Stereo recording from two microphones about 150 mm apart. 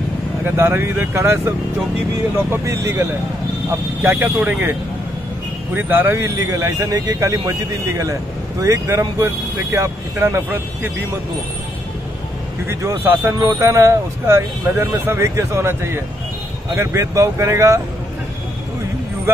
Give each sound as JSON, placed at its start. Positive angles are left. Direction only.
{"t": 0.6, "sound": "speech", "side_deg": -15}
{"t": 2.5, "sound": "speech", "side_deg": -20}
{"t": 5.8, "sound": "speech", "side_deg": -15}
{"t": 12.6, "sound": "speech", "side_deg": -15}